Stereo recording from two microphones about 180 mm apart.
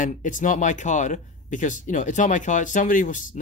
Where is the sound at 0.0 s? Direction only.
45° left (ahead or behind).